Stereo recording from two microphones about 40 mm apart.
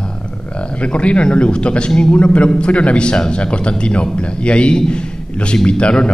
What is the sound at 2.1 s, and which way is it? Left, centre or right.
A man's voice, left.